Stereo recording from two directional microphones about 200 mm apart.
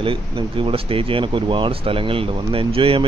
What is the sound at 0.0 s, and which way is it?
Speech, 25° right (ahead or behind).